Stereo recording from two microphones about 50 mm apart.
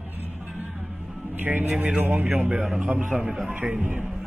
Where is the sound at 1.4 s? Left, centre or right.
Right.